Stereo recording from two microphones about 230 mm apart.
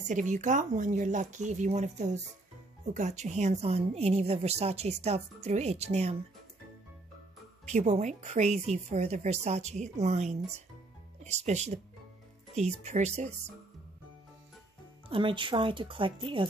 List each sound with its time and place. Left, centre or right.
0.1 s a woman's voice: right
7.6 s a woman's voice: right
15.0 s a woman's voice: right